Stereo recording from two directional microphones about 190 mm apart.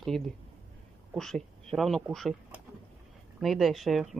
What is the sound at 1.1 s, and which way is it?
Speech, centre (ahead or behind).